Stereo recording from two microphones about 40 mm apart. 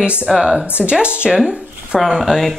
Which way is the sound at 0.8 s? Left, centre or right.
Right.